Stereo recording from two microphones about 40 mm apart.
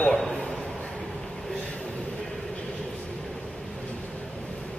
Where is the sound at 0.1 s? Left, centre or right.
Centre.